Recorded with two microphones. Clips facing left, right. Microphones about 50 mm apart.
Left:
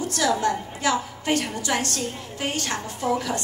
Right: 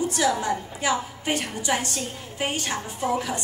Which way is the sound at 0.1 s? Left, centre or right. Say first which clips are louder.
Left 1 dB; centre.